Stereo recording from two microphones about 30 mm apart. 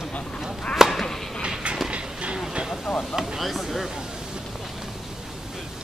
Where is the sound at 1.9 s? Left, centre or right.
Right.